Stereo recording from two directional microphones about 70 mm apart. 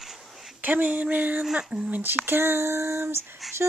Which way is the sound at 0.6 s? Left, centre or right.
Right.